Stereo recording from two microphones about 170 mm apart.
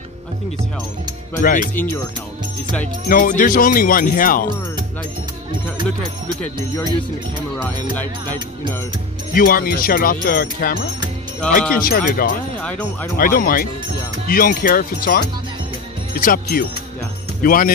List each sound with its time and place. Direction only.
1.4 s speech: 50° left (ahead or behind)
3.1 s speech: 55° left (ahead or behind)
9.3 s speech: 55° left (ahead or behind)
12.5 s speech: 5° left (ahead or behind)
13.2 s speech: 55° left (ahead or behind)